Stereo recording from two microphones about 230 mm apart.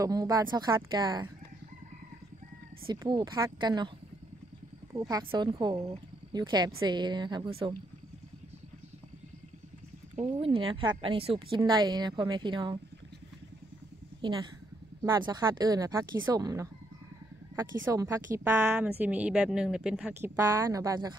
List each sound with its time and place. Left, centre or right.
0.0 s speech: centre
2.9 s a woman's voice: centre
5.1 s a woman's voice: right
10.1 s a woman's voice: right
14.2 s speech: centre
17.9 s speech: centre